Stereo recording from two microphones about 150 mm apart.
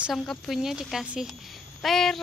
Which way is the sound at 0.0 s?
Centre (ahead or behind).